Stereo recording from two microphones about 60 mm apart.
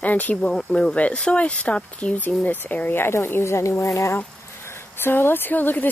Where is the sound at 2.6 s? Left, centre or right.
Left.